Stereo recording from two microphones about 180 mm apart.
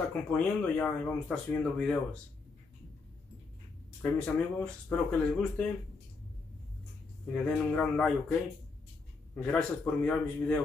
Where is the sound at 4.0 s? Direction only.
10° left (ahead or behind).